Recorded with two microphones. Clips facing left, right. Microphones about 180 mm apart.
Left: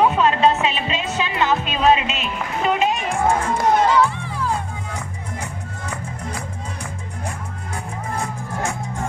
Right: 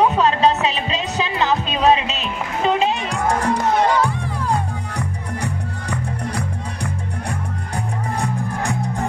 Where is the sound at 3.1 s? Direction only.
70° right (ahead or behind).